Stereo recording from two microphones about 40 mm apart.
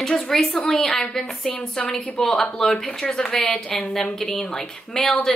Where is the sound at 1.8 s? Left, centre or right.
Left.